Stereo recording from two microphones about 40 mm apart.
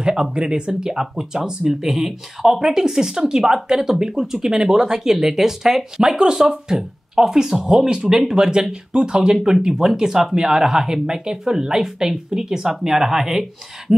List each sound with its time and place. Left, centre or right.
0.0 s speech: centre